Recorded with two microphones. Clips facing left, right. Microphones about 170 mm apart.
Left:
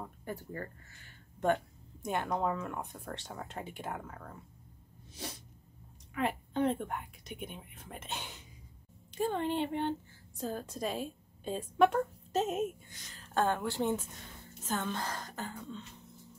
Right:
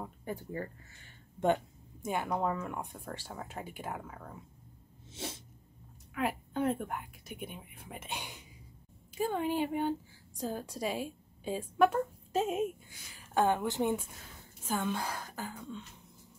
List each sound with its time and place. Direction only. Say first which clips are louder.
0.0 s speech: right 2 dB; 15° right (ahead or behind)
2.0 s speech: even; 5° right (ahead or behind)
5.1 s sneeze: right 2 dB; 25° right (ahead or behind)
6.1 s a woman's voice: left 1 dB; 5° right (ahead or behind)